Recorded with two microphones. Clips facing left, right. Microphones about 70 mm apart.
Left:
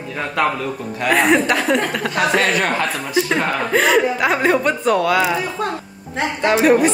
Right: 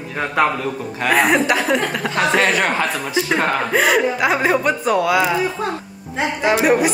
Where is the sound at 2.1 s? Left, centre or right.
Right.